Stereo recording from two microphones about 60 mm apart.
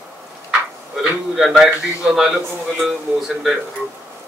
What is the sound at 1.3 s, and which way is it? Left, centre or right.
A man's voice, centre.